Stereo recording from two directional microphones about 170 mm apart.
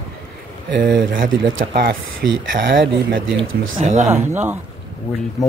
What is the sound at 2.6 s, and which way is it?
Speech, 90° right.